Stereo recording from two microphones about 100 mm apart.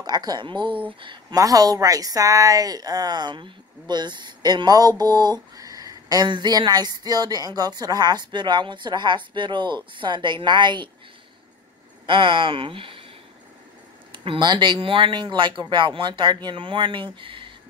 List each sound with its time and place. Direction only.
0.0 s a woman's voice: 45° right (ahead or behind)
1.3 s a woman's voice: 35° right (ahead or behind)
12.1 s speech: 60° right (ahead or behind)
14.1 s a woman's voice: 60° right (ahead or behind)